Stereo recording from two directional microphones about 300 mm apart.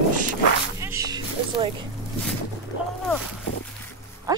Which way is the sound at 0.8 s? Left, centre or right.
Centre.